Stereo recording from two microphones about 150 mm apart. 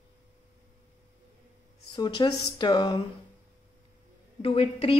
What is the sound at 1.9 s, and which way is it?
A man's voice, 30° left (ahead or behind).